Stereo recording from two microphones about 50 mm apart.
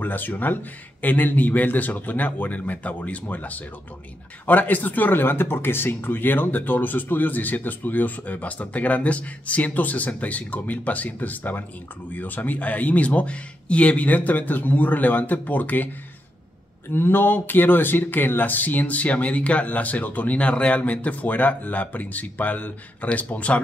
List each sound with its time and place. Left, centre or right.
0.0 s speech: left
16.9 s speech: left